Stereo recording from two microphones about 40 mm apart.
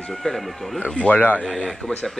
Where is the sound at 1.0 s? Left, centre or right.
Left.